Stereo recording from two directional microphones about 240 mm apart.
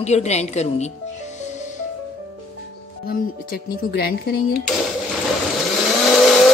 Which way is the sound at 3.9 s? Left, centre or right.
Left.